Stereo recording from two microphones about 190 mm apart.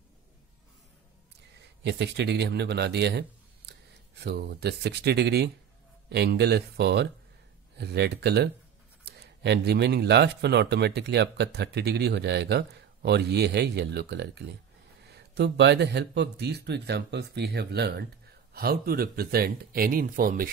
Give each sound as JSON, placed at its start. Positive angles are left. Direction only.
{"t": 1.8, "sound": "speech", "side_deg": -65}